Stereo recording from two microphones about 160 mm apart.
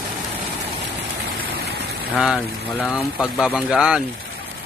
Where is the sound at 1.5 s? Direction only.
85° right.